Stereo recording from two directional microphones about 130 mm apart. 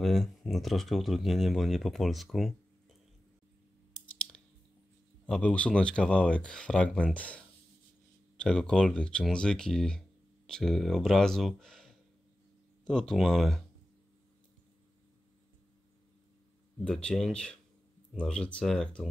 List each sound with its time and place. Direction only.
0.0 s speech: centre (ahead or behind)
5.2 s speech: 10° left (ahead or behind)
16.8 s speech: 5° left (ahead or behind)